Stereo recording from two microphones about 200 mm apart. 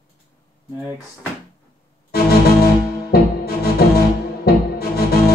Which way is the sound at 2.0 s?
50° left (ahead or behind).